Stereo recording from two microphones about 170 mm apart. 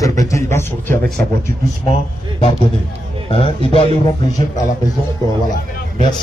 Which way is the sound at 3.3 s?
30° left (ahead or behind).